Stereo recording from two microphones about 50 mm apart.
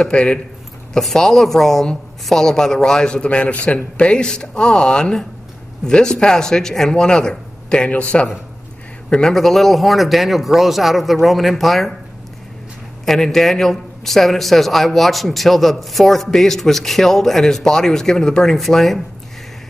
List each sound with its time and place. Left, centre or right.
0.0 s a man's voice: left
0.9 s a woman's voice: centre
7.9 s a man's voice: left
9.1 s a man's voice: centre
13.0 s a man's voice: centre